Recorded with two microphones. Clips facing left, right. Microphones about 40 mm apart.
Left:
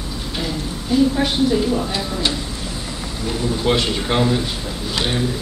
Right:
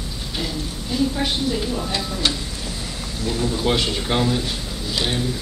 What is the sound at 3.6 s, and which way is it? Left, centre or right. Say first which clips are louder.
Speech: left 5 dB; centre.